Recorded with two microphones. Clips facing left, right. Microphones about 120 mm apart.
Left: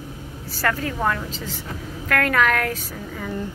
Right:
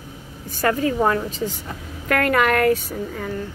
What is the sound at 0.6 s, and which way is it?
Speech, 15° right (ahead or behind).